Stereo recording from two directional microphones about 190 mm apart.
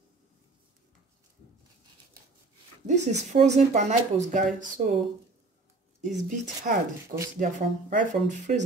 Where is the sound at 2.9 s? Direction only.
35° right (ahead or behind).